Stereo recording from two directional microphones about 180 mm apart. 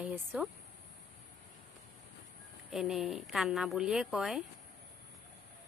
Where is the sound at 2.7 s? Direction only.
Centre (ahead or behind).